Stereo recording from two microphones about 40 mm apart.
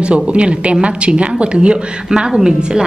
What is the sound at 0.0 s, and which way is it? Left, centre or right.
Speech, right.